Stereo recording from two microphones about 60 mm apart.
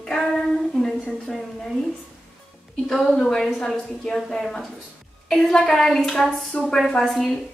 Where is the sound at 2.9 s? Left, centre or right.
Centre.